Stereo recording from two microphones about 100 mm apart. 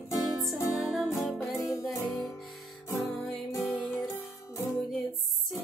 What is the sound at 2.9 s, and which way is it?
Music, 30° left (ahead or behind).